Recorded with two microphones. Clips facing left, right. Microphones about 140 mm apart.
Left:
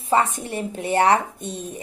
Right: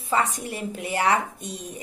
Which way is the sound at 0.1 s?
30° left (ahead or behind).